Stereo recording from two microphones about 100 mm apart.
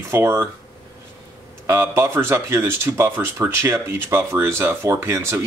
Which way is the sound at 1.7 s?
20° right (ahead or behind).